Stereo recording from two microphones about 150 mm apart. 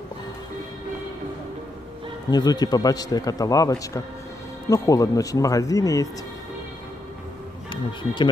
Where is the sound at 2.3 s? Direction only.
25° left (ahead or behind).